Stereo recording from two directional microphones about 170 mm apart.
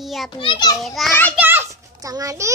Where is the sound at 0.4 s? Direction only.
25° left (ahead or behind).